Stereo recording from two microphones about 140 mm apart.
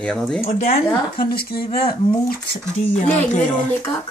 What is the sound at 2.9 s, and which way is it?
Speech, 60° left (ahead or behind).